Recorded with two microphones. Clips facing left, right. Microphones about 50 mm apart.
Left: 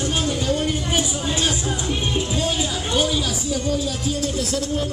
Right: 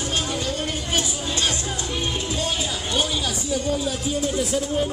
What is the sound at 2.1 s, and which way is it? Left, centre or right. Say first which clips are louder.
Speech: left 3 dB; centre.